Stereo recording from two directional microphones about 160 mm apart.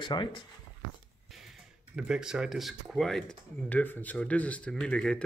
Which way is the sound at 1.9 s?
5° right (ahead or behind).